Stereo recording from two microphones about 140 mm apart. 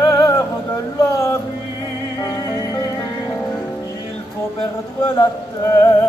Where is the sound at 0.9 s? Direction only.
20° left (ahead or behind).